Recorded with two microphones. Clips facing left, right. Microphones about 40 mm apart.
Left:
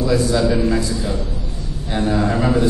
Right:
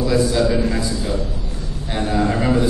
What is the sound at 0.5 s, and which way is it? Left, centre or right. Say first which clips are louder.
Speech: left 2 dB; centre.